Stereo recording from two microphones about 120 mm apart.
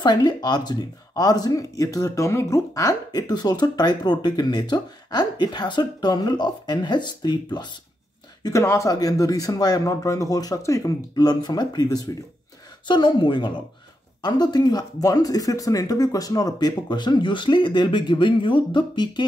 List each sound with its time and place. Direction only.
0.0 s speech: 35° left (ahead or behind)